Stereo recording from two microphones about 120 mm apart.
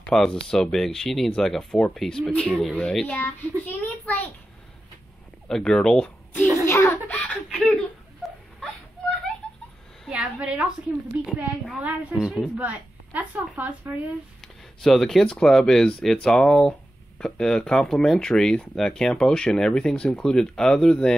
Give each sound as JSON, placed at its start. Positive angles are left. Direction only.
{"t": 0.0, "sound": "a child's voice", "side_deg": 5}
{"t": 5.5, "sound": "speech", "side_deg": 5}
{"t": 6.6, "sound": "a child's voice", "side_deg": 20}
{"t": 7.1, "sound": "a sound", "side_deg": 10}
{"t": 10.0, "sound": "a woman's voice", "side_deg": -10}
{"t": 11.8, "sound": "a woman's voice", "side_deg": -10}
{"t": 14.8, "sound": "speech", "side_deg": 0}